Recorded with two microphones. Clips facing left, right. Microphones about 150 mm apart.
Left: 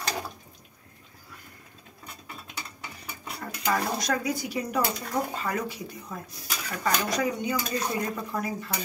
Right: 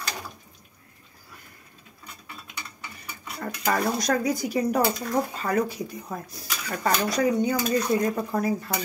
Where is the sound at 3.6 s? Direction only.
40° right (ahead or behind).